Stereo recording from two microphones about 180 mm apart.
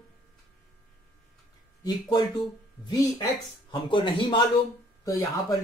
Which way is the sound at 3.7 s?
30° left (ahead or behind).